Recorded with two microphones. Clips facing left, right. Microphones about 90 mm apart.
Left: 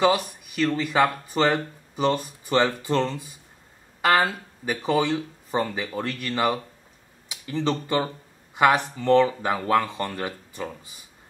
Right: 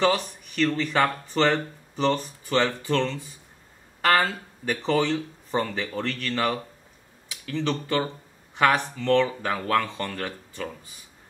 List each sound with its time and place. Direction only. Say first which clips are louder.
0.0 s speech: left 2 dB; 10° left (ahead or behind)